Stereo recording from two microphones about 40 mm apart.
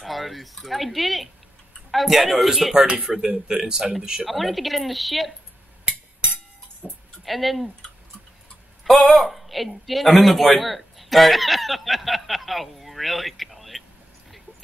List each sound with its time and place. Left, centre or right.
0.0 s a man's voice: centre
3.1 s speech: centre
4.3 s a man's voice: centre
5.9 s a sound: right
6.8 s music: centre
7.2 s a man's voice: centre
8.9 s a man's voice: centre